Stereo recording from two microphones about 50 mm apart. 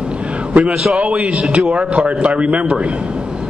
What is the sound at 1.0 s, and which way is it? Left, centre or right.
A man's voice, right.